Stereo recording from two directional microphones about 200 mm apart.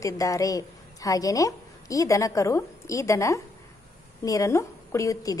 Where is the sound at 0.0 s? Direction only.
15° left (ahead or behind).